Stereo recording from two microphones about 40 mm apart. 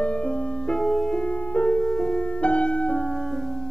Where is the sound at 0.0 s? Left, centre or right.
Left.